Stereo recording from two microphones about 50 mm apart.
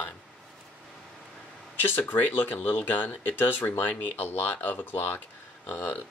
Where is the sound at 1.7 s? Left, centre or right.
Left.